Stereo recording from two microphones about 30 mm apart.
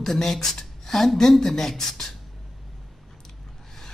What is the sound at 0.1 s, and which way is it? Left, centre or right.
Speech, centre.